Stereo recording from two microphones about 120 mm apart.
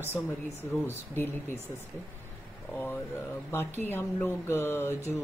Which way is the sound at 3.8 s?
15° left (ahead or behind).